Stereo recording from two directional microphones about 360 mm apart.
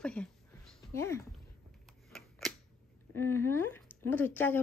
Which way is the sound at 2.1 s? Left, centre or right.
Centre.